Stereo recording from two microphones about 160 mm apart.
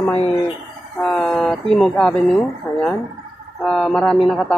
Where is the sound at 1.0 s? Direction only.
5° left (ahead or behind).